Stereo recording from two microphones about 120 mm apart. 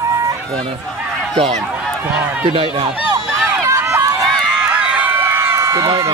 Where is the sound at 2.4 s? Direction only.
50° right (ahead or behind).